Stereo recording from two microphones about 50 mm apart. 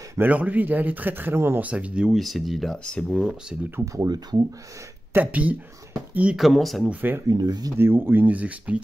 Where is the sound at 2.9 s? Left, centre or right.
Centre.